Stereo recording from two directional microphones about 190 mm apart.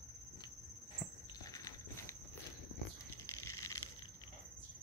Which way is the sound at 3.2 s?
15° left (ahead or behind).